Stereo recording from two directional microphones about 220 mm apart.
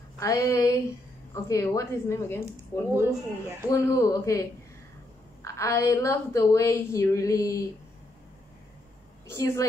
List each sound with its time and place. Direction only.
0.2 s a woman's voice: 15° left (ahead or behind)
2.9 s speech: 10° right (ahead or behind)
3.7 s a woman's voice: 15° left (ahead or behind)
9.3 s a woman's voice: 15° left (ahead or behind)